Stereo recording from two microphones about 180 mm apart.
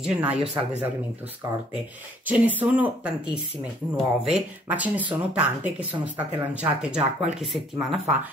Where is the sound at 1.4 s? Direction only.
20° right (ahead or behind).